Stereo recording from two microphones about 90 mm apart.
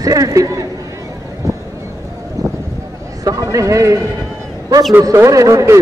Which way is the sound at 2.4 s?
40° right (ahead or behind).